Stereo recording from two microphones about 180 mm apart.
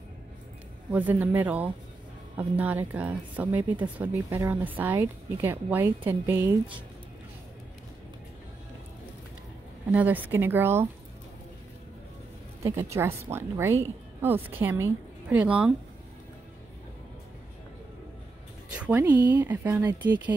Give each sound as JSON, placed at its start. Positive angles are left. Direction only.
{"t": 0.9, "sound": "speech", "side_deg": -10}
{"t": 9.8, "sound": "speech", "side_deg": -10}
{"t": 12.6, "sound": "speech", "side_deg": -15}
{"t": 18.7, "sound": "speech", "side_deg": -10}